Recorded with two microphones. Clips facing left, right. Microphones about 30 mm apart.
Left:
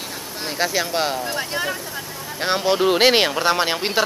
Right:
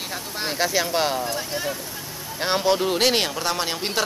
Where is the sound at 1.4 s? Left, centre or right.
Left.